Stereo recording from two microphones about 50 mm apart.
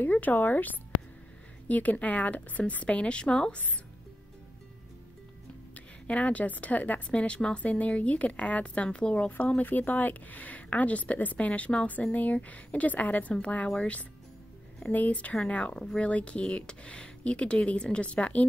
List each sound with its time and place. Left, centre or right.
0.0 s a woman's voice: left; by 3.5 s centre
6.0 s a woman's voice: left
9.6 s a woman's voice: left